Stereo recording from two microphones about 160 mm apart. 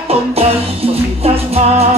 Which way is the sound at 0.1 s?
40° right (ahead or behind).